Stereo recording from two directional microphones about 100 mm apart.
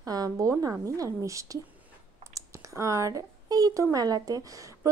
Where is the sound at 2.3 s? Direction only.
30° right (ahead or behind).